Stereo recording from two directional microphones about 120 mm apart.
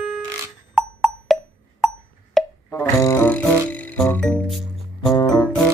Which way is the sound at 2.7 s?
20° left (ahead or behind).